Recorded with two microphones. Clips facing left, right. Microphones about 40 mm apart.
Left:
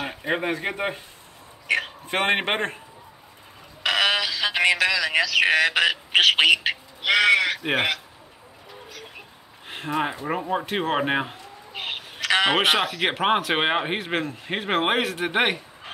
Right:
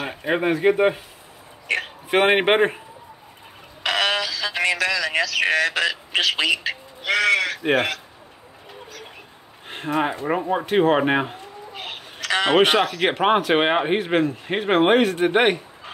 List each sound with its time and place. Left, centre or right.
0.0 s speech: centre
2.0 s speech: centre
3.8 s music: centre
4.6 s a man's voice: left
9.7 s speech: centre
11.7 s a sound: left
12.5 s speech: centre